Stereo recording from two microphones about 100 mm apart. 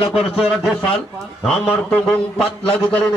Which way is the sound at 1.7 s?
10° left (ahead or behind).